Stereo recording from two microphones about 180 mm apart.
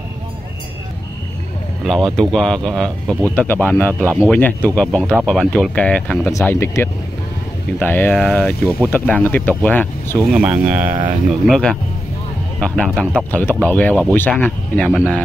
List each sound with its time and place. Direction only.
1.9 s speech: centre (ahead or behind)
4.0 s speech: 15° right (ahead or behind)
4.3 s speech: 10° left (ahead or behind)
10.3 s speech: 5° right (ahead or behind)
10.8 s speech: 45° right (ahead or behind)
11.2 s speech: centre (ahead or behind)